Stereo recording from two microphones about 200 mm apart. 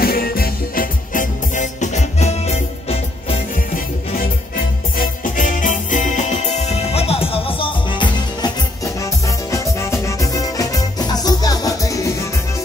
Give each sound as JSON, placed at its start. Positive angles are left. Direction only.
{"t": 0.0, "sound": "music", "side_deg": 50}
{"t": 4.9, "sound": "music", "side_deg": 45}